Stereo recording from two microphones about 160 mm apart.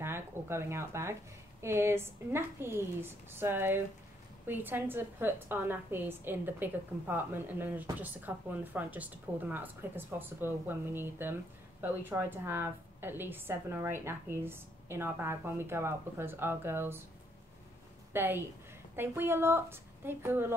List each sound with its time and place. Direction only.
0.0 s a woman's voice: 15° right (ahead or behind)
18.1 s a woman's voice: 15° right (ahead or behind)